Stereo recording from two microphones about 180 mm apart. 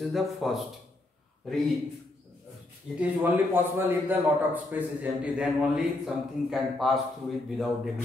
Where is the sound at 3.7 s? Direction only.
10° right (ahead or behind).